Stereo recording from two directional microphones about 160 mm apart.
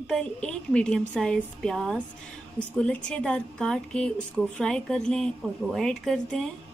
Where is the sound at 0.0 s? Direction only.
5° left (ahead or behind).